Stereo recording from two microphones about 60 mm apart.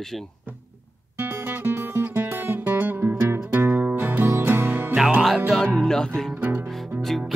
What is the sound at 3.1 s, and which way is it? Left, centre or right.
Music, right.